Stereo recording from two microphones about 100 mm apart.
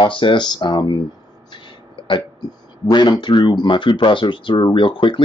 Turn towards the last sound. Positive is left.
turn(degrees=55)  # may be behind; listen again after turning